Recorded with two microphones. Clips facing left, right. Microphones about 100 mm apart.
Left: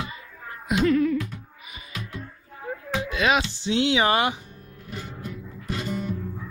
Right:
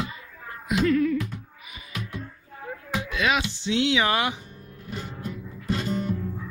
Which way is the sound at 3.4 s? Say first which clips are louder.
Left 1 dB; 35° left (ahead or behind).